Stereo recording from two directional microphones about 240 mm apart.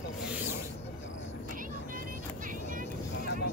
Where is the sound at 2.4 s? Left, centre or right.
Right.